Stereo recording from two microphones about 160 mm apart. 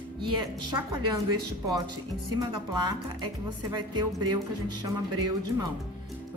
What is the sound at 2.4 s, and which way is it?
Speech, 25° right (ahead or behind).